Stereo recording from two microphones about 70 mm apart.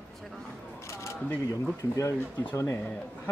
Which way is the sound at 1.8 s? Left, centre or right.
Left.